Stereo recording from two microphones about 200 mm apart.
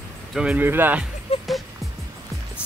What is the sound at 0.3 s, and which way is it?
Speech, 5° right (ahead or behind).